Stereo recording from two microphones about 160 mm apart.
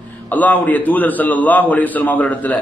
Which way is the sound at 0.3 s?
10° left (ahead or behind).